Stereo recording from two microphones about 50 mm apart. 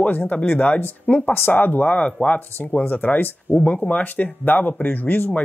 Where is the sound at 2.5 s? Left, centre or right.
Left.